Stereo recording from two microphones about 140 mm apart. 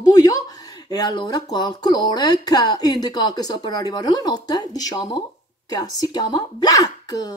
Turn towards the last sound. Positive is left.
turn(degrees=25)  # may be behind; listen again after turning